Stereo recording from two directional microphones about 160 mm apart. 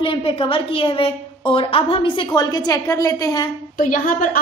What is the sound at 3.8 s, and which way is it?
Speech, 60° left (ahead or behind).